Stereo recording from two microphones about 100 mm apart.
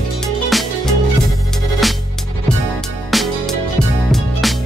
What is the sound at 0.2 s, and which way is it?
Music, centre (ahead or behind).